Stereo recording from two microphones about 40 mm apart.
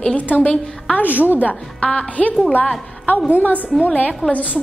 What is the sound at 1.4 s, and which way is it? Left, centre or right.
Speech, left.